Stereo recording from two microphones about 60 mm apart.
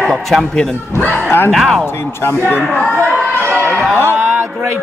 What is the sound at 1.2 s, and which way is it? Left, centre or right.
Speech, left.